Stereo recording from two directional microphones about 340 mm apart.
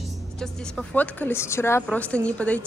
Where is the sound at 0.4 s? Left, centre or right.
Centre.